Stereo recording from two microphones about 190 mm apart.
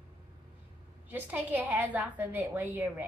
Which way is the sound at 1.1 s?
10° right (ahead or behind).